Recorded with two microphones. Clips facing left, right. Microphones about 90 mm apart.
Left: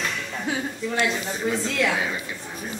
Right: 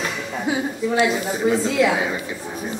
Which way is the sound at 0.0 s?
15° right (ahead or behind).